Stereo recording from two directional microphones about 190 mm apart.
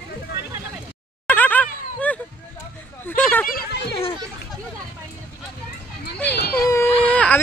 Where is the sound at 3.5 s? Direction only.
50° left (ahead or behind).